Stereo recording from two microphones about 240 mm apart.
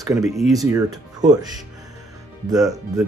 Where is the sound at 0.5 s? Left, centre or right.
Centre.